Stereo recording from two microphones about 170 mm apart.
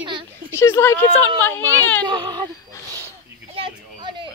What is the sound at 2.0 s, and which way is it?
Speech, 25° right (ahead or behind).